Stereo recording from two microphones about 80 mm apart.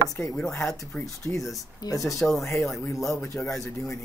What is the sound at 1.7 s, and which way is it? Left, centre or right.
Speech, left.